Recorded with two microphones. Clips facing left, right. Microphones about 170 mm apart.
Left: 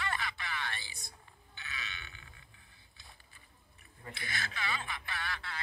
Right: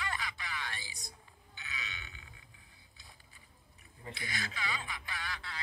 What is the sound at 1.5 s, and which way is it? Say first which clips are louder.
Grunt: even; 60° left (ahead or behind).